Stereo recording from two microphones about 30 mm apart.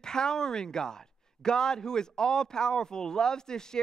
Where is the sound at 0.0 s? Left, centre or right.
Left.